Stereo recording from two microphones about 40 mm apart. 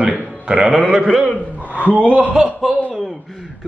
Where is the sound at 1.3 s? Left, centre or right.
Left.